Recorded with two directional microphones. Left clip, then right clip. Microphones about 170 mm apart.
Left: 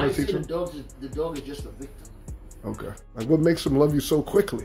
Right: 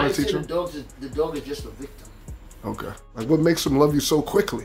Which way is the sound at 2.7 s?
Centre (ahead or behind).